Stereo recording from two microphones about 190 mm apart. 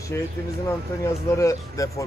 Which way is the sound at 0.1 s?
10° left (ahead or behind).